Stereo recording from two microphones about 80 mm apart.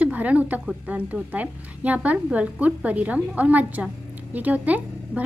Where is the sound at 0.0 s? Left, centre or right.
Centre.